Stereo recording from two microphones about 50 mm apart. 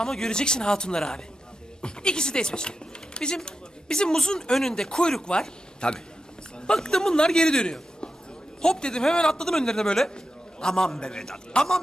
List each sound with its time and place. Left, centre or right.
0.0 s speech: centre